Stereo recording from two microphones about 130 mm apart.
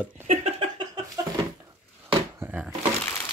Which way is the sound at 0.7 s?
35° right (ahead or behind).